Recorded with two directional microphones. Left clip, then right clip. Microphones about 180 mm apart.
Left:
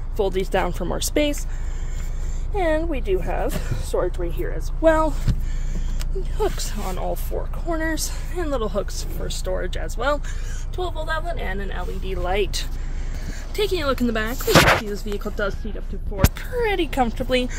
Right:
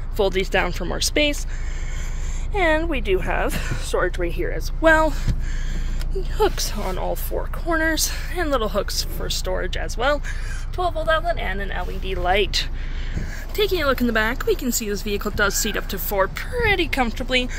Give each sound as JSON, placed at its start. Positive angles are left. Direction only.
{"t": 0.2, "sound": "speech", "side_deg": 15}
{"t": 2.5, "sound": "speech", "side_deg": 0}
{"t": 4.2, "sound": "speech", "side_deg": -10}
{"t": 4.8, "sound": "a sound", "side_deg": 10}
{"t": 6.3, "sound": "speech", "side_deg": 0}
{"t": 10.8, "sound": "speech", "side_deg": -5}
{"t": 15.0, "sound": "speech", "side_deg": -15}
{"t": 16.3, "sound": "speech", "side_deg": 25}